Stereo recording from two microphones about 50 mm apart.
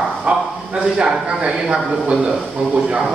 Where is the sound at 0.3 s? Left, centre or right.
Right.